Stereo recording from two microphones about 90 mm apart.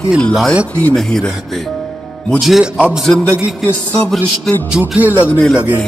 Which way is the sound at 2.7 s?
15° right (ahead or behind).